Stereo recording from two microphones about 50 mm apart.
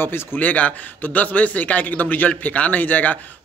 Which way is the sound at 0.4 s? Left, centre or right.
Left.